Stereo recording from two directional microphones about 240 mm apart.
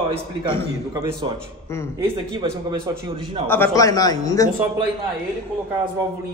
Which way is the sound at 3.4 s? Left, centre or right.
Centre.